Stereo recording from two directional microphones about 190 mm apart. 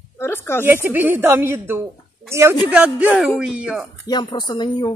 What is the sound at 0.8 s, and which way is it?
A woman's voice, 10° right (ahead or behind).